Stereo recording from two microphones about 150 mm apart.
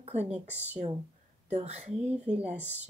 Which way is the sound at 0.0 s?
45° right (ahead or behind).